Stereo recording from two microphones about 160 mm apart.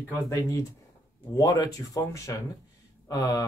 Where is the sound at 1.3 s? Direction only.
25° left (ahead or behind).